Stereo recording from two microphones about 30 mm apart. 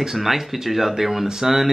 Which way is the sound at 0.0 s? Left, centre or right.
Centre.